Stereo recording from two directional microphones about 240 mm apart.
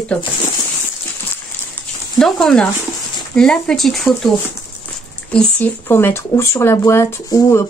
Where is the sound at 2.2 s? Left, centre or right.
Centre.